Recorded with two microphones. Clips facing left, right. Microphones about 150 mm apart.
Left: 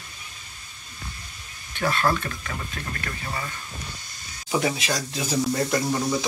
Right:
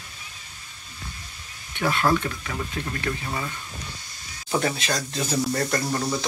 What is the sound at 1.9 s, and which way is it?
Speech, 15° right (ahead or behind).